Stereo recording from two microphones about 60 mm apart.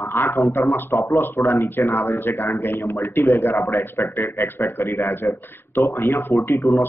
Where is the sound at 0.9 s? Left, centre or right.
Left.